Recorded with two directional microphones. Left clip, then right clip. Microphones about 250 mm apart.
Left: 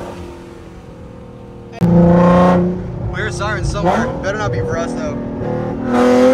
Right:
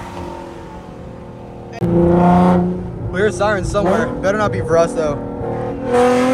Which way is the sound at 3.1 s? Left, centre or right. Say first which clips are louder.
Right 5 dB; centre.